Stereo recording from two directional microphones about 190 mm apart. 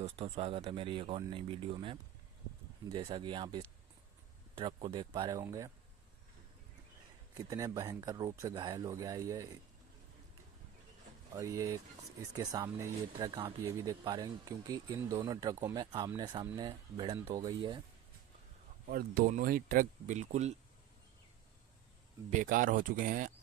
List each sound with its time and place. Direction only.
0.0 s speech: 30° right (ahead or behind); by 5.7 s 15° right (ahead or behind)
7.3 s speech: 20° right (ahead or behind)
11.3 s speech: 15° right (ahead or behind)
18.9 s speech: 50° right (ahead or behind)
22.3 s speech: 45° right (ahead or behind)